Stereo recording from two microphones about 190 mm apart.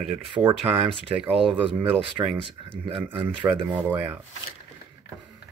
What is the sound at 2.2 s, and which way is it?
Speech, 15° right (ahead or behind).